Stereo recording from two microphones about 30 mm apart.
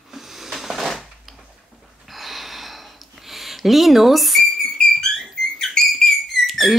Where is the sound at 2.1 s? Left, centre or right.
Centre.